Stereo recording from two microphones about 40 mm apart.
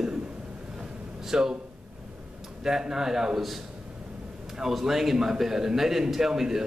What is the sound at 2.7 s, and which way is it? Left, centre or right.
Speech, centre.